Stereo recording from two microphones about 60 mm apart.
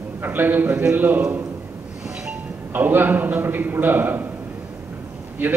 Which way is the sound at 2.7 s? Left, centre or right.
Right.